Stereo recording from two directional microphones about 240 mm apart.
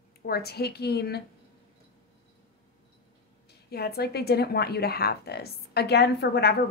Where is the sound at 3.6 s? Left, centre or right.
Left.